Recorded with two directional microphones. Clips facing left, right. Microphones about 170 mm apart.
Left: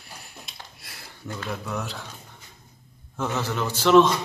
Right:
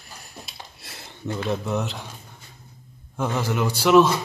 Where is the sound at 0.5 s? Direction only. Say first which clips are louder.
Right 3 dB; 25° right (ahead or behind).